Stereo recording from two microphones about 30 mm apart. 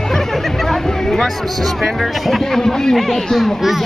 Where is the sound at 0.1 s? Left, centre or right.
Centre.